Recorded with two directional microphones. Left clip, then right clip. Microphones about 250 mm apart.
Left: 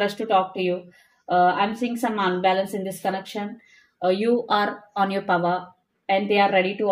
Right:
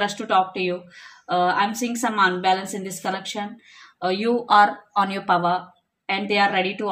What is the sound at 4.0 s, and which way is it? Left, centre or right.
Speech, centre.